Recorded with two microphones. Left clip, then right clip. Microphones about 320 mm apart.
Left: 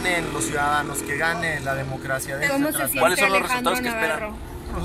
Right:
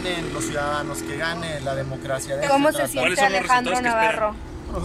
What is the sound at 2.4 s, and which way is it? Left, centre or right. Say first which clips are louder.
Speech: right 5 dB; right.